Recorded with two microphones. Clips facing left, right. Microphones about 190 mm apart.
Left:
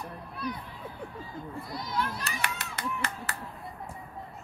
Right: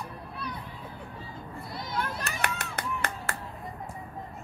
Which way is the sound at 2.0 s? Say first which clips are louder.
Right 1 dB; 50° right (ahead or behind).